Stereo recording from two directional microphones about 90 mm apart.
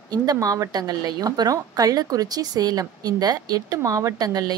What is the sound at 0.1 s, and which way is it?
A woman's voice, 45° right (ahead or behind).